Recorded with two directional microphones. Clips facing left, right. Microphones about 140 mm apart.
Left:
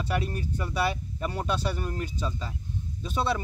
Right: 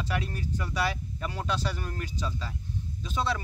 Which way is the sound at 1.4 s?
15° left (ahead or behind).